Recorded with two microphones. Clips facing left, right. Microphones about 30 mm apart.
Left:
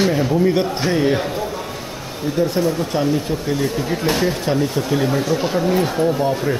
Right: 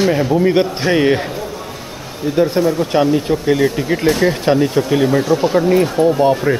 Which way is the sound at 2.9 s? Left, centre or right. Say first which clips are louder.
Right 7 dB; right.